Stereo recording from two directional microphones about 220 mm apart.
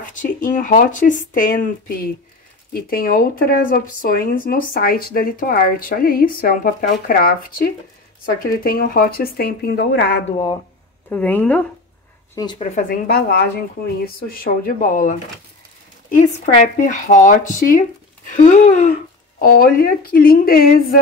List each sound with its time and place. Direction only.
0.0 s speech: 35° left (ahead or behind)
2.7 s speech: 45° left (ahead or behind)
11.1 s speech: 10° left (ahead or behind)
12.5 s speech: 30° left (ahead or behind)
16.2 s speech: 35° left (ahead or behind)